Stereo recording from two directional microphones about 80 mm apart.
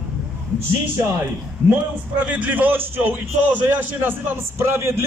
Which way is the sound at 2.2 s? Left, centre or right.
Centre.